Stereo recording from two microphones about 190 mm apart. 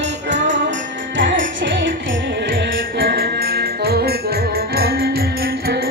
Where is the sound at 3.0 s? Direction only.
50° right (ahead or behind).